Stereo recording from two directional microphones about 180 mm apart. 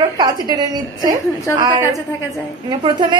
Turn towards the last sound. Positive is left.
turn(degrees=-25)  # may be behind; listen again after turning